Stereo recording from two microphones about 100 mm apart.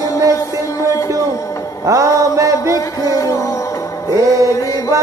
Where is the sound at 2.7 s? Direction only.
35° left (ahead or behind).